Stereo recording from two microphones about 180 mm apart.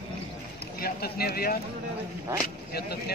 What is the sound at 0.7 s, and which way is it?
Speech, 60° left (ahead or behind).